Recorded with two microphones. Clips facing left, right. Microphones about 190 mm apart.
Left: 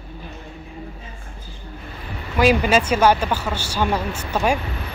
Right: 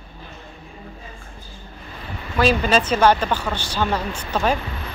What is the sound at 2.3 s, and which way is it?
A woman's voice, 10° left (ahead or behind).